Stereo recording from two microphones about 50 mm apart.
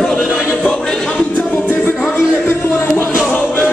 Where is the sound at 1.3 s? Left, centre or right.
Left.